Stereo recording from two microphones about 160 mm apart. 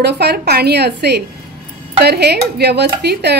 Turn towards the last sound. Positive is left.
turn(degrees=-90)